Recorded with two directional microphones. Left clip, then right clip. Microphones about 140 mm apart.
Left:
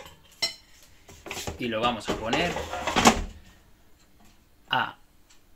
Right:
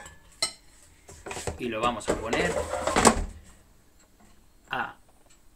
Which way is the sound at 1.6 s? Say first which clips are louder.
Left 1 dB; 55° left (ahead or behind).